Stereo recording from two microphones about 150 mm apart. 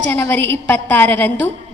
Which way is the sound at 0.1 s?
15° left (ahead or behind).